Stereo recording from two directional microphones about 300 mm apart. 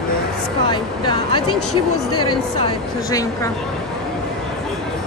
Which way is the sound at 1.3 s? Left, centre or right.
Left.